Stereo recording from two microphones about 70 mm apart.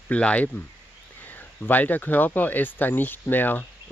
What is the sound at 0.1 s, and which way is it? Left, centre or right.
Speech, centre.